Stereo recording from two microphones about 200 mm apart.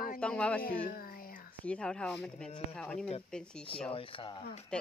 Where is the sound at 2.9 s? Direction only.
30° left (ahead or behind).